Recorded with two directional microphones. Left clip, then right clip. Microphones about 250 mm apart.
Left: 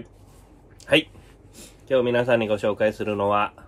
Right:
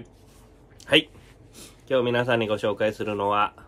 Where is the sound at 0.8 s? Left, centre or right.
Centre.